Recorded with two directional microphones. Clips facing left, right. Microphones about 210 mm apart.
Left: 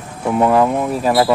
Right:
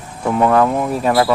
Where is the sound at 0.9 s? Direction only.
5° left (ahead or behind).